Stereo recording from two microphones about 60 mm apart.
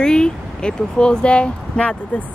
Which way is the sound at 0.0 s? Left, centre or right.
Centre.